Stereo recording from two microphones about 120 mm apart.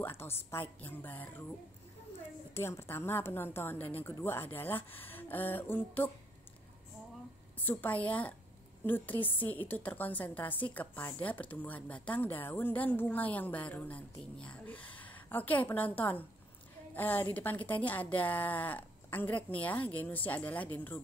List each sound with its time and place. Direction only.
0.0 s a woman's voice: 20° left (ahead or behind)
2.5 s a woman's voice: 20° left (ahead or behind)
7.5 s a woman's voice: 15° left (ahead or behind)